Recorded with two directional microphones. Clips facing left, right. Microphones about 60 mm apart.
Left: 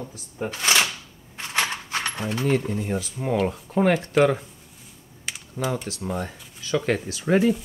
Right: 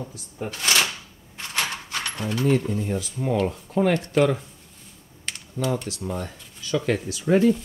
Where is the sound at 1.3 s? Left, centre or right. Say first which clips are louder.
Left 2 dB; left.